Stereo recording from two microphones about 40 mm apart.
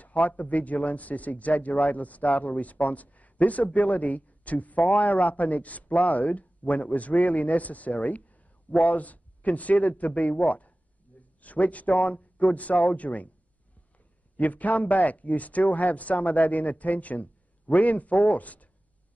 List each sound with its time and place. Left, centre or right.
0.0 s a sound: left
0.4 s a man's voice: left
14.4 s speech: left